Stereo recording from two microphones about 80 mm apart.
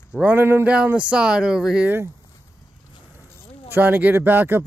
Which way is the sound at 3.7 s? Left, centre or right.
Right.